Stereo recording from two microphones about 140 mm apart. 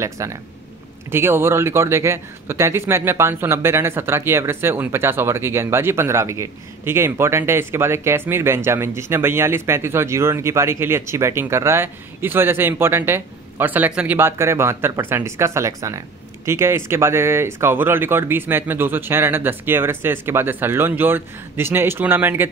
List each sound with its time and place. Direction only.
0.0 s speech: 20° right (ahead or behind)